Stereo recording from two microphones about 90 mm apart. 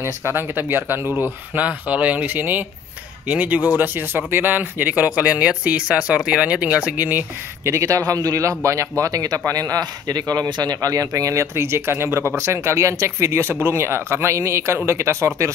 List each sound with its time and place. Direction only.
0.0 s speech: 25° right (ahead or behind)
7.6 s a man's voice: 35° right (ahead or behind)